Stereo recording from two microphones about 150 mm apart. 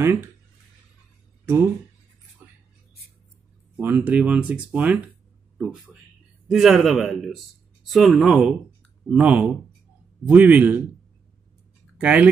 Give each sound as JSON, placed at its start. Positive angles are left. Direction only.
{"t": 1.4, "sound": "speech", "side_deg": -15}
{"t": 2.4, "sound": "a sound", "side_deg": -15}
{"t": 3.7, "sound": "speech", "side_deg": -10}
{"t": 6.5, "sound": "speech", "side_deg": 0}
{"t": 12.0, "sound": "speech", "side_deg": -10}